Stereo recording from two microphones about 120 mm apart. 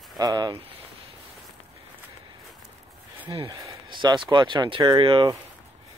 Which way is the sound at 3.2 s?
30° right (ahead or behind).